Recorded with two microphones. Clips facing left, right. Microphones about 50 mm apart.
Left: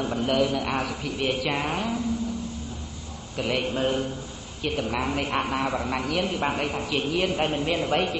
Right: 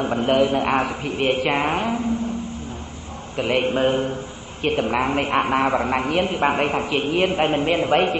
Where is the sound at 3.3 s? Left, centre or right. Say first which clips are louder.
Right 6 dB; right.